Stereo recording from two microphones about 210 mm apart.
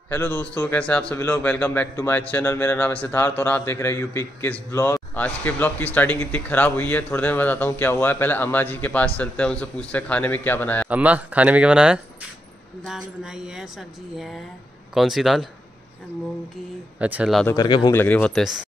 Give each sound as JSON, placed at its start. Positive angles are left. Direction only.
{"t": 0.1, "sound": "a man's voice", "side_deg": 10}
{"t": 10.9, "sound": "speech", "side_deg": -5}
{"t": 17.0, "sound": "speech", "side_deg": -5}
{"t": 17.5, "sound": "speech", "side_deg": 20}
{"t": 17.9, "sound": "a man's voice", "side_deg": 5}